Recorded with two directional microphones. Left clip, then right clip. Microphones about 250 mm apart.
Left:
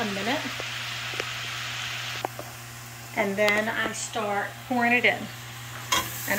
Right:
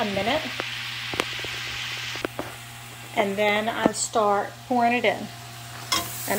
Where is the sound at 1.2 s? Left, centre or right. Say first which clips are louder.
Right 7 dB; right.